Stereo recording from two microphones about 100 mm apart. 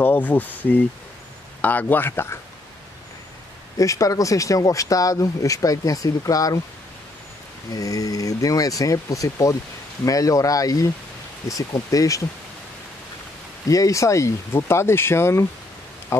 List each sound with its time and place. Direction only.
0.0 s speech: 20° left (ahead or behind)
3.7 s speech: 35° left (ahead or behind)
7.7 s speech: 35° left (ahead or behind)
11.9 s speech: 35° left (ahead or behind)
13.7 s speech: 35° left (ahead or behind)